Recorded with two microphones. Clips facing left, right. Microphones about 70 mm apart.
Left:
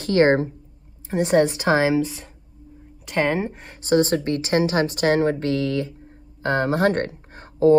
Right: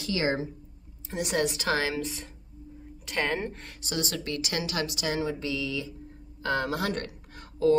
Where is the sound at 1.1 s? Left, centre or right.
Left.